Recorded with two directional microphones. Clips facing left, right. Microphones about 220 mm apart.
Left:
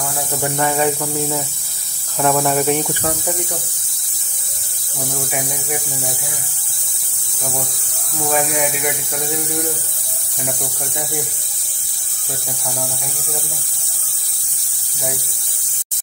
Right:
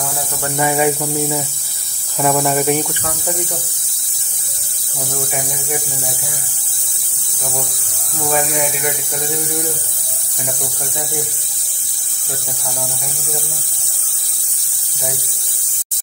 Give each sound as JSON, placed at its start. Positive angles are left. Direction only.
{"t": 0.6, "sound": "speech", "side_deg": -10}
{"t": 2.9, "sound": "speech", "side_deg": 35}
{"t": 8.3, "sound": "speech", "side_deg": 0}